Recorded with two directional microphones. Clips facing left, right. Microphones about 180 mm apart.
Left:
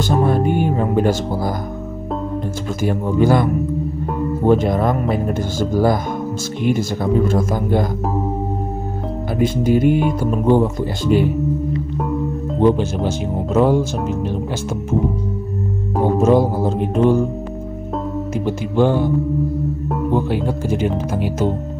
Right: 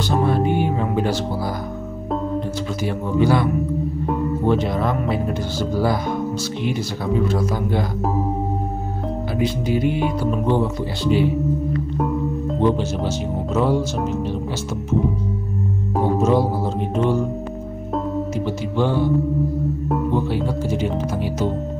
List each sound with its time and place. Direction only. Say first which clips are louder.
0.3 s music: left 2 dB; 50° left (ahead or behind)
2.8 s speech: left 4 dB; 45° left (ahead or behind)
4.5 s speech: left 6 dB; 45° left (ahead or behind)
9.4 s speech: left 6 dB; 50° left (ahead or behind)
12.6 s speech: left 5 dB; 50° left (ahead or behind)
16.2 s speech: left 6 dB; 50° left (ahead or behind)
18.4 s music: left 7 dB; 50° left (ahead or behind)
20.2 s speech: left 2 dB; 55° left (ahead or behind)